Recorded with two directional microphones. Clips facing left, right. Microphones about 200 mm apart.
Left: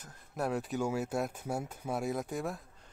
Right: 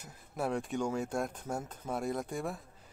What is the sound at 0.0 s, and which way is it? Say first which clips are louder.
Speech: even; centre (ahead or behind).